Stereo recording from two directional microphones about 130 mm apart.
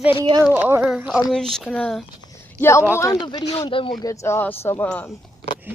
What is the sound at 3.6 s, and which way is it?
Speech, 45° left (ahead or behind).